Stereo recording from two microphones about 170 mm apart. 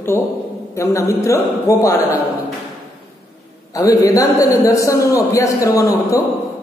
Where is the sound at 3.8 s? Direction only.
20° left (ahead or behind).